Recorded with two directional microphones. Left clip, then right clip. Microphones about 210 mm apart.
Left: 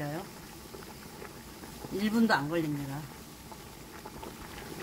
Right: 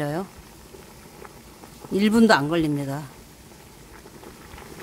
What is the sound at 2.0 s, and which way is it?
Speech, 45° right (ahead or behind).